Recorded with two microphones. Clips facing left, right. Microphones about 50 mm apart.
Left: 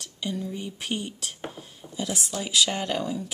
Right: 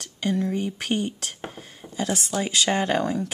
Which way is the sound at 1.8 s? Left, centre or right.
Right.